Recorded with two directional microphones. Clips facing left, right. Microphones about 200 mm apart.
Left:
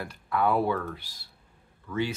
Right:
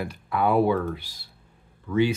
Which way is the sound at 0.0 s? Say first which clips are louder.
Right 2 dB; 15° right (ahead or behind).